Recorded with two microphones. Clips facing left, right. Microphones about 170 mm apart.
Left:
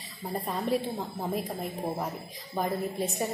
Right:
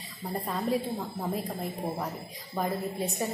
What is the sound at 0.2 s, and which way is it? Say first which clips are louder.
A woman's voice: even; centre (ahead or behind).